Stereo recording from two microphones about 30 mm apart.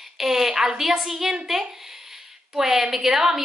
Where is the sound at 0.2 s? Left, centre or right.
Centre.